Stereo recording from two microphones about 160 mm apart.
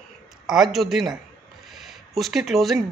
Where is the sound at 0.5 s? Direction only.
Centre (ahead or behind).